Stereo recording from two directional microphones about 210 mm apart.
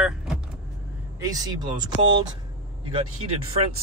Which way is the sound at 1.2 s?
20° right (ahead or behind).